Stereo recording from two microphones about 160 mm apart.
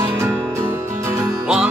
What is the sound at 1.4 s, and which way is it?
Music, 5° right (ahead or behind).